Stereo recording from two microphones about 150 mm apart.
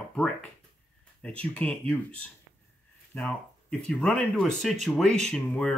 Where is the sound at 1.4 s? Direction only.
10° left (ahead or behind).